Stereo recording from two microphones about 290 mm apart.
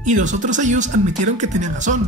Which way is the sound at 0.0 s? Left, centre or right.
Right.